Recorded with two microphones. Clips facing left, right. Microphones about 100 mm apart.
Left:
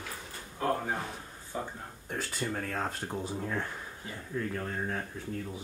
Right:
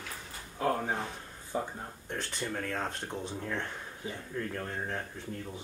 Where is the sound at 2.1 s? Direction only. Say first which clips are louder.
Left 2 dB; 5° left (ahead or behind).